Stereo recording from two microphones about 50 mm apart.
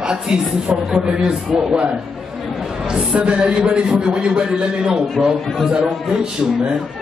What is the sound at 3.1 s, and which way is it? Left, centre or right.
A man's voice, right.